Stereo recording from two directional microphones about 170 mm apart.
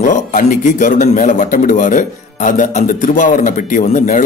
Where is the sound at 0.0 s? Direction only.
50° left (ahead or behind).